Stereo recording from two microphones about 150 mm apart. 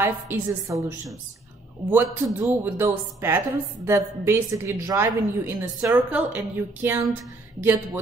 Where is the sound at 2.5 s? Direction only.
15° right (ahead or behind).